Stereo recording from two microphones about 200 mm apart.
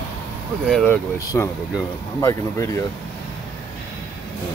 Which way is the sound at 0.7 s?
5° left (ahead or behind).